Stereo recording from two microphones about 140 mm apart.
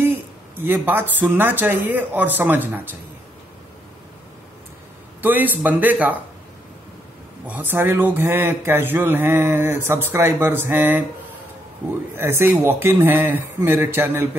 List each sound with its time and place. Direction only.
0.6 s speech: 15° right (ahead or behind)
5.2 s speech: 15° right (ahead or behind)
7.4 s speech: 15° right (ahead or behind)
12.2 s speech: 15° right (ahead or behind)